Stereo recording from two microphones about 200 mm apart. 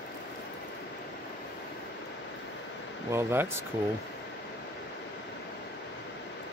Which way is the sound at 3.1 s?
10° right (ahead or behind).